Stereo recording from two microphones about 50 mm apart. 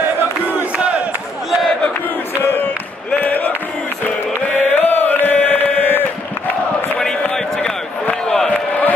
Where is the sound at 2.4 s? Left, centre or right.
Left.